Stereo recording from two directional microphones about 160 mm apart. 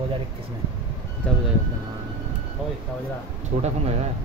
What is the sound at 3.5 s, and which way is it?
Speech, 40° right (ahead or behind).